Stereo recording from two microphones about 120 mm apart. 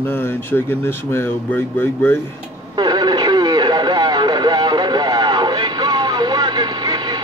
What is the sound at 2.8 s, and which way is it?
Radio, 35° right (ahead or behind).